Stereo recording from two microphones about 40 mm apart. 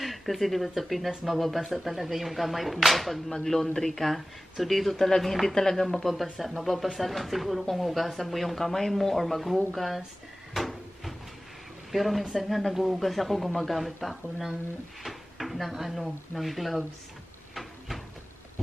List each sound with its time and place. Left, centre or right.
0.0 s speech: centre
3.3 s speech: centre
10.5 s cupboard open or close: centre
11.9 s speech: centre
17.6 s a sound: centre